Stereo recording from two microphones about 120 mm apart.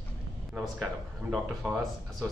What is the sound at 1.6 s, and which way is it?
Speech, centre (ahead or behind).